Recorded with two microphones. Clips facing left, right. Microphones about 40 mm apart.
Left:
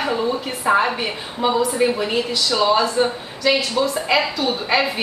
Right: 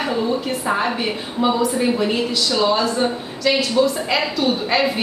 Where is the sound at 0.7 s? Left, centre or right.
Centre.